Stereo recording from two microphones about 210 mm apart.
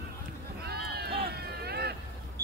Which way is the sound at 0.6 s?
50° right (ahead or behind).